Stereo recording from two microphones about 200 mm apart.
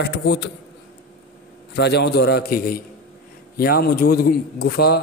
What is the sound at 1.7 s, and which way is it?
A man's voice, 55° left (ahead or behind).